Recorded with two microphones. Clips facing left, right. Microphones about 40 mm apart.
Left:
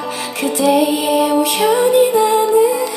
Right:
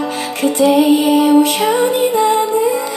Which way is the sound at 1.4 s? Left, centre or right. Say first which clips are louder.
Even; right.